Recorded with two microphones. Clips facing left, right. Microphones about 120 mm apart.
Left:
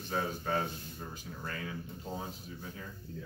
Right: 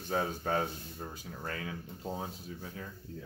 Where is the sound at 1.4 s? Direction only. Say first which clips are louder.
Right 2 dB; 70° right (ahead or behind).